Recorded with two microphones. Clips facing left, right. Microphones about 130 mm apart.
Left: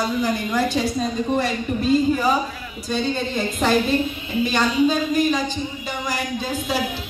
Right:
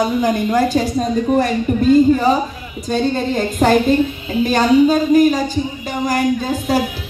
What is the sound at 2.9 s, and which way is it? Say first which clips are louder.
A woman's voice: right 6 dB; 50° right (ahead or behind).